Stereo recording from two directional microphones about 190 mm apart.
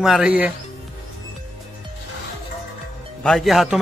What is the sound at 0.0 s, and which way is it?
Speech, 5° right (ahead or behind).